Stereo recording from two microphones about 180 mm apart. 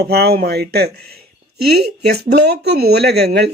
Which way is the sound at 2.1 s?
65° right (ahead or behind).